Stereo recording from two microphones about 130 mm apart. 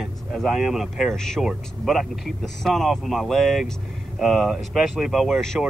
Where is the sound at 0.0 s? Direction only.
Centre (ahead or behind).